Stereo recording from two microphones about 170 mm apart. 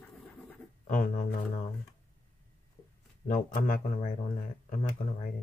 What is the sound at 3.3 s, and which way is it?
Speech, 55° left (ahead or behind).